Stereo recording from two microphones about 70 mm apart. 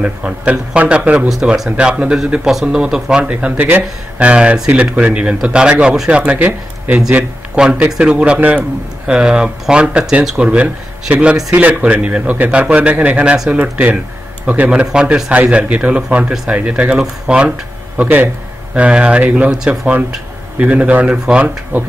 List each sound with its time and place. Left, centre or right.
0.0 s a man's voice: centre
19.5 s a man's voice: centre